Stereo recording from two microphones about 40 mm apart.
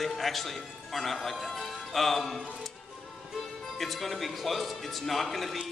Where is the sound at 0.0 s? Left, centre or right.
Centre.